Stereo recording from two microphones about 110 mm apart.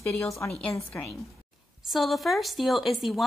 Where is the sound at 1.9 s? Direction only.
Centre (ahead or behind).